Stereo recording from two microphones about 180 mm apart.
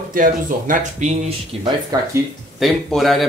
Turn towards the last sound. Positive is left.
turn(degrees=0)  # may be behind; listen again after turning